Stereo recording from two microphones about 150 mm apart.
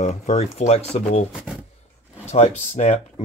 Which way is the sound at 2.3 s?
50° left (ahead or behind).